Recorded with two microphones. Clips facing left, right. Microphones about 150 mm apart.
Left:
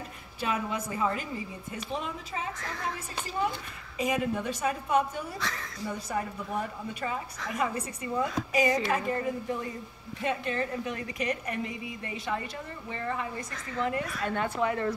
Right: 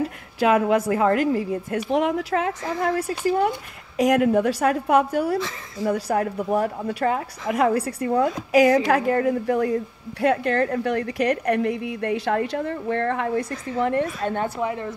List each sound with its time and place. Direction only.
0.4 s a woman's voice: 75° right (ahead or behind)
14.6 s speech: 20° right (ahead or behind)